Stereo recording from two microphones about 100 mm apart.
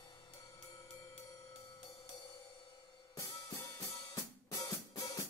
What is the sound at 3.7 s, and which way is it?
Music, 35° left (ahead or behind).